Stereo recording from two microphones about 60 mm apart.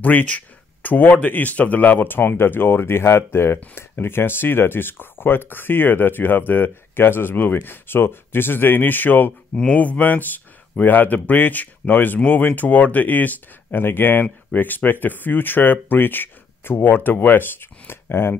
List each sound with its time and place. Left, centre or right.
0.0 s speech: left